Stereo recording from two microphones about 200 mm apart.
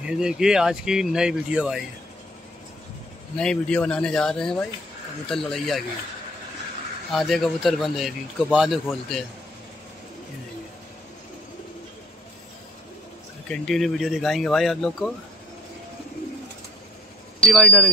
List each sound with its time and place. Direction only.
0.0 s speech: 5° right (ahead or behind)
3.3 s speech: 5° left (ahead or behind)
7.1 s speech: centre (ahead or behind)
13.5 s speech: centre (ahead or behind)
17.4 s speech: centre (ahead or behind)